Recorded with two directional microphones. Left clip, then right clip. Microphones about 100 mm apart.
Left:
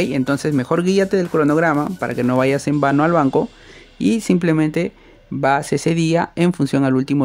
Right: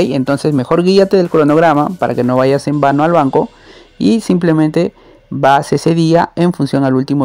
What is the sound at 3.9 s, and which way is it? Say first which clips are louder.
Speech: right 5 dB; 30° right (ahead or behind).